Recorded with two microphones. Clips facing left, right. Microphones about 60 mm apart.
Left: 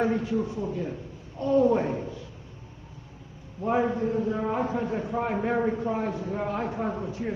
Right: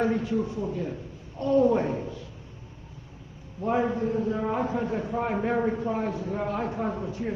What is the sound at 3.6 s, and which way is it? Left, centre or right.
A man's voice, centre.